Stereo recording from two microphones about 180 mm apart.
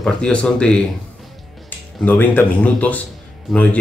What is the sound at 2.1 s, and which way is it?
Speech, 10° left (ahead or behind).